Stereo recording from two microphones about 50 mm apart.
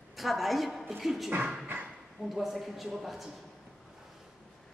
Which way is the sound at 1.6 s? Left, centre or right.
Right.